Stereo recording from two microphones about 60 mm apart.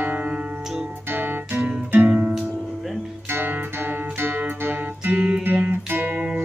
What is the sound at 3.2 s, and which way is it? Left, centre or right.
Music, right.